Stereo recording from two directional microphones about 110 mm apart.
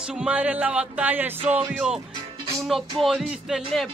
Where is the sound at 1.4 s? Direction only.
65° right (ahead or behind).